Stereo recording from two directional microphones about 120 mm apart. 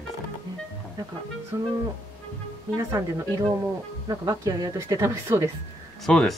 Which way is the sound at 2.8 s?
30° right (ahead or behind).